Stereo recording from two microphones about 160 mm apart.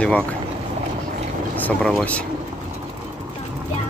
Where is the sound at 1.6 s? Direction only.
10° left (ahead or behind).